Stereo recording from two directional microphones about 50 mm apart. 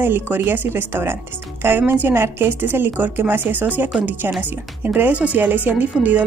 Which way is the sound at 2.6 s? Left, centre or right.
Right.